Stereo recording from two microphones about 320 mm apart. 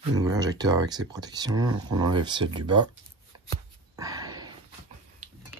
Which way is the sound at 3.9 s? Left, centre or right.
Centre.